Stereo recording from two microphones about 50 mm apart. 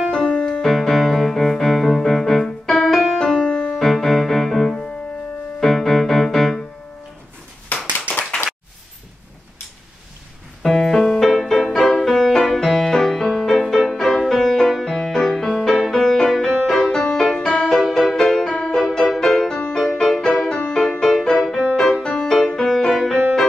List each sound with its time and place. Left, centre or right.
0.1 s music: centre
0.6 s music: centre
3.3 s music: centre
3.7 s music: centre
7.7 s clapping: left
10.6 s music: centre
17.7 s music: centre
20.3 s music: centre